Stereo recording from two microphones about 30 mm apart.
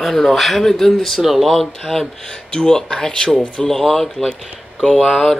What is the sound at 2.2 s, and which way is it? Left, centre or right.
Speech, left.